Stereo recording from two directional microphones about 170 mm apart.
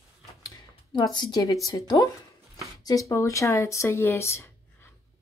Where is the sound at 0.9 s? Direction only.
25° left (ahead or behind).